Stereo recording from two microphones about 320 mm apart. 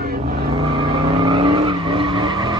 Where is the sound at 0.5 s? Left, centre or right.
Centre.